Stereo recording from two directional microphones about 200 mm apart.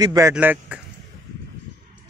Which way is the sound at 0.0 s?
15° right (ahead or behind).